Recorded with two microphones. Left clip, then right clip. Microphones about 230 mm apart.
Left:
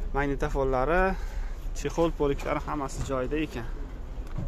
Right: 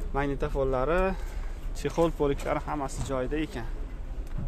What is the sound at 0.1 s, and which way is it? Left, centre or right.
Speech, centre.